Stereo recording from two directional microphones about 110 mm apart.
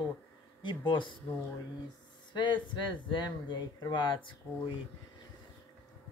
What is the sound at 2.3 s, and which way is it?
Speech, 45° left (ahead or behind).